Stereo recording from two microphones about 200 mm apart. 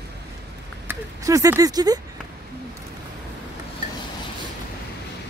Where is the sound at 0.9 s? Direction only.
15° right (ahead or behind).